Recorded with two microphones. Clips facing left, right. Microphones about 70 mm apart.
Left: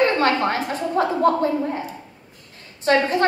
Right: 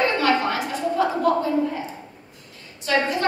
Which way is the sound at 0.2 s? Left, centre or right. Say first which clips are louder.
Left 1 dB; left.